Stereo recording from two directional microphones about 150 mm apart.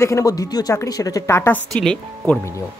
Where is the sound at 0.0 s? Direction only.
20° left (ahead or behind).